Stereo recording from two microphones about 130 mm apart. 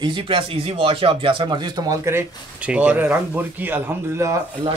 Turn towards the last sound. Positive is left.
turn(degrees=-20)  # may be behind; listen again after turning